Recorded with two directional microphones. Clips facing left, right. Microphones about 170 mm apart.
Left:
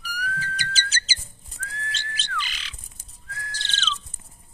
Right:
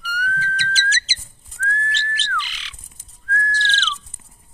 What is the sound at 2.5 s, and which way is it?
Squawk, 40° left (ahead or behind).